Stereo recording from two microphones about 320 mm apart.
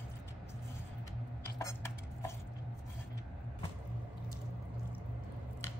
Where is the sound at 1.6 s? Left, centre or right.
Centre.